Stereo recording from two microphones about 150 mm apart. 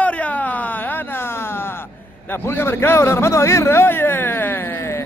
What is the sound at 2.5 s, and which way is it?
A man's voice, 15° left (ahead or behind).